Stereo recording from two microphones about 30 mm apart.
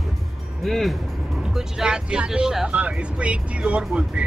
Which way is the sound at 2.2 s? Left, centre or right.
Centre.